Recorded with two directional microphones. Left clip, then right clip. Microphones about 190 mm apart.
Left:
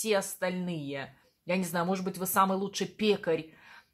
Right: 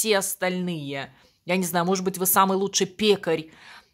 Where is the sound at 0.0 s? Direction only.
40° right (ahead or behind).